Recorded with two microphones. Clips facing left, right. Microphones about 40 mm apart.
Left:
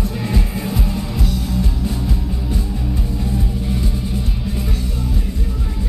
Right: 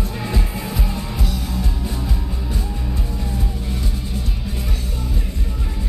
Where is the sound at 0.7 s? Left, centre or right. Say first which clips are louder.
Left 4 dB; centre.